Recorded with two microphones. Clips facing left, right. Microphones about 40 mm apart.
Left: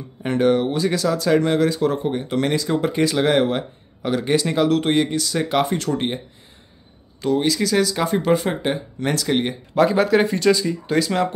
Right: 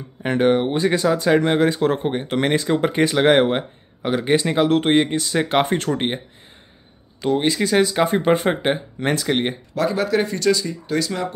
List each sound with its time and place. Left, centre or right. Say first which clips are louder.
0.2 s speech: even; right
9.8 s speech: left 4 dB; centre